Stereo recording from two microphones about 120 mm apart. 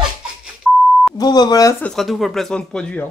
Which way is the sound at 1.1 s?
35° left (ahead or behind).